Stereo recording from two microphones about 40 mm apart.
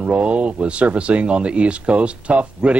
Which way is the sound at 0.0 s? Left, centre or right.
Right.